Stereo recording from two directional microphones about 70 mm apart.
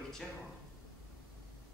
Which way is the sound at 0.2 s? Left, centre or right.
Centre.